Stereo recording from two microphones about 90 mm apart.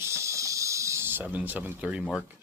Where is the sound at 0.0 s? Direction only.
30° right (ahead or behind); by 2.0 s 15° right (ahead or behind).